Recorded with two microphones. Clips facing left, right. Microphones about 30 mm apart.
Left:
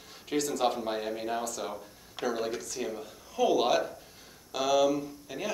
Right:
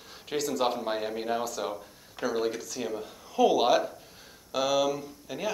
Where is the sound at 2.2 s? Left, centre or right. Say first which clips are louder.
Right 1 dB; left.